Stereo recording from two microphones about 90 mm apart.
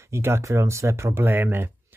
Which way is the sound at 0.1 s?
30° right (ahead or behind).